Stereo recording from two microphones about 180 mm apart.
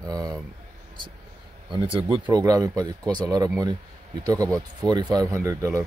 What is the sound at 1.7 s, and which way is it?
Speech, 30° right (ahead or behind).